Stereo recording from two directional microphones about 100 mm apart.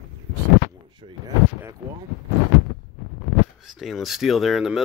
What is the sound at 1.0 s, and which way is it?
Speech, 80° right.